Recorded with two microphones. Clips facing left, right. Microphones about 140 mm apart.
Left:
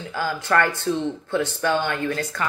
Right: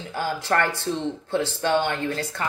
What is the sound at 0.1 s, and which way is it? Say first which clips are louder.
Speech: left 2 dB; 25° right (ahead or behind).